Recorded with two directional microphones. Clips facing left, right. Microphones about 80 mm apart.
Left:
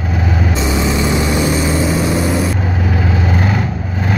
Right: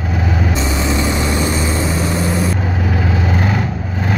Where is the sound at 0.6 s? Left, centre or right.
Centre.